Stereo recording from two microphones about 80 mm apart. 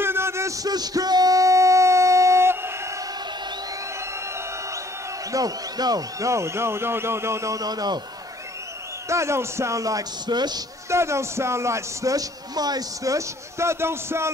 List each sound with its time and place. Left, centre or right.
0.0 s a sound: right
0.7 s music: right
5.3 s speech: right
9.1 s speech: right
10.2 s speech: right
10.9 s speech: right